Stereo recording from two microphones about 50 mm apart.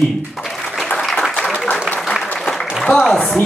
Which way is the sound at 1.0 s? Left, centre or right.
Centre.